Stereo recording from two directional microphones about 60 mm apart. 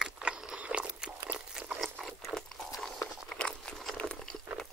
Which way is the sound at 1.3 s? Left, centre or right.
Centre.